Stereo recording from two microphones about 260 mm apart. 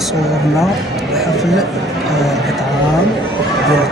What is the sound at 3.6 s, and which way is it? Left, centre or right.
Neigh, centre.